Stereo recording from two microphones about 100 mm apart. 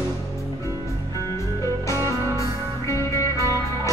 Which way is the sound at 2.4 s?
30° left (ahead or behind).